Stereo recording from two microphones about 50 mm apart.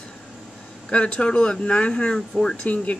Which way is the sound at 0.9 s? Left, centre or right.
Left.